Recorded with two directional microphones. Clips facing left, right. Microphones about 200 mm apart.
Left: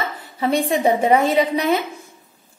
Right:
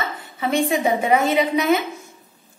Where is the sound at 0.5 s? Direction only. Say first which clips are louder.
Left 2 dB; 35° left (ahead or behind).